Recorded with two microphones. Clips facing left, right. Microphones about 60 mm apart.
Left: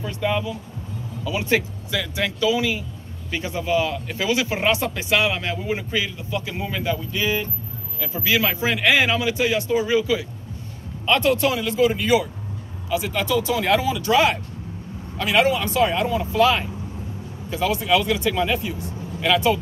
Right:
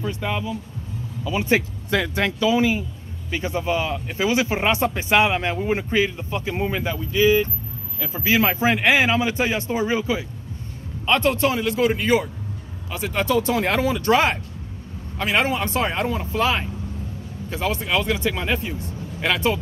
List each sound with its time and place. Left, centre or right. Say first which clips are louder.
0.0 s speech: left 2 dB; centre
1.9 s speech: right 4 dB; right
7.1 s speech: right 6 dB; centre
8.1 s speech: right 2 dB; right
11.6 s speech: even; right
16.2 s speech: left 7 dB; right
17.5 s speech: left 4 dB; right